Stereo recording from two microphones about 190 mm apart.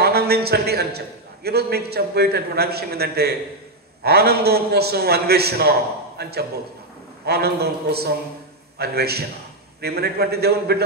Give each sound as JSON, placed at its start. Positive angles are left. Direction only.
{"t": 0.0, "sound": "a man's voice", "side_deg": -55}